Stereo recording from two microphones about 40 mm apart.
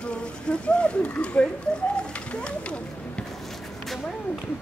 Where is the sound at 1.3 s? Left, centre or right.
Left.